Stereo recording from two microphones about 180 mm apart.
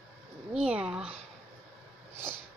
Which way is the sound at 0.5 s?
5° right (ahead or behind).